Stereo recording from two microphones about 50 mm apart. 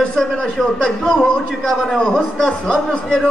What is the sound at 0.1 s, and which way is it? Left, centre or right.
A man's voice, centre.